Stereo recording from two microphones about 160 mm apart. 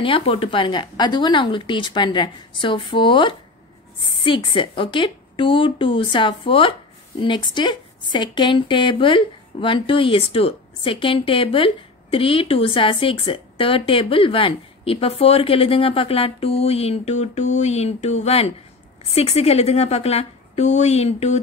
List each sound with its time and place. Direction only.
0.0 s a woman's voice: 35° left (ahead or behind)